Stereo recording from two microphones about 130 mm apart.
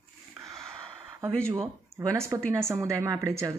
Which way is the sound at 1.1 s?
20° right (ahead or behind).